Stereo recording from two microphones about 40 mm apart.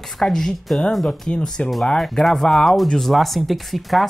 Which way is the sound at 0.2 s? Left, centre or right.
Centre.